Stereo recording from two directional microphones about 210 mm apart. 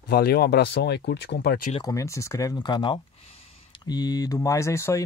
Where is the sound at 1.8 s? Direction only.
15° left (ahead or behind).